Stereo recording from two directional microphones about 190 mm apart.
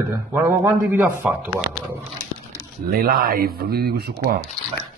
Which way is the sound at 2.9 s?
50° right (ahead or behind).